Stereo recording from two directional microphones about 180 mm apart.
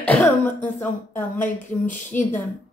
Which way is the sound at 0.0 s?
10° left (ahead or behind).